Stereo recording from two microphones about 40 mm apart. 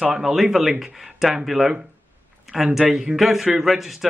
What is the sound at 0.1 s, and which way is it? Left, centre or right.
Speech, centre.